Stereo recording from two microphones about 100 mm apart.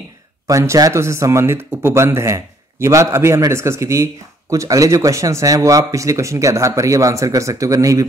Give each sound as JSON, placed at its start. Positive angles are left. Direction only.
{"t": 0.5, "sound": "speech", "side_deg": -30}